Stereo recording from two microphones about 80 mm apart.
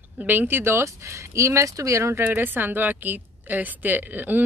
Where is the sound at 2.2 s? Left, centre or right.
Right.